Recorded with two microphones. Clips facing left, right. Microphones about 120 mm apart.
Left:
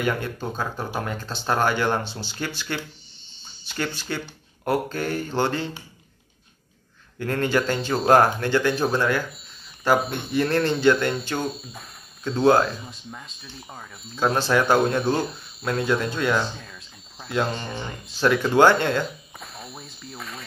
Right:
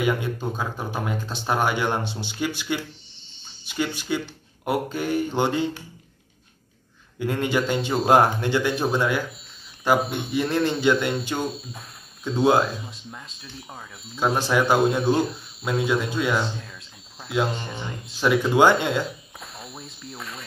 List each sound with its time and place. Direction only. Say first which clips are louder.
0.0 s speech: right 2 dB; 10° right (ahead or behind)
7.2 s speech: left 1 dB; 15° right (ahead or behind)
11.3 s speech: even; centre (ahead or behind)